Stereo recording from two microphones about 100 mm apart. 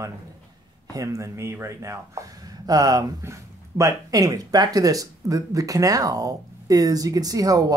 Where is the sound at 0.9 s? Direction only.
30° right (ahead or behind).